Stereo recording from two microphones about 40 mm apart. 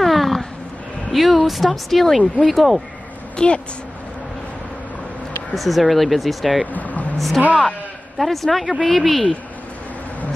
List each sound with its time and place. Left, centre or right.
0.0 s cat: centre
1.1 s speech: centre
3.3 s a woman's voice: left
5.5 s speech: centre
6.7 s vehicle: left
7.2 s speech: centre